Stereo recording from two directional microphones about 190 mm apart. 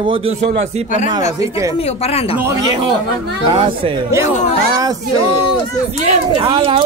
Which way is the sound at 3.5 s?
25° right (ahead or behind).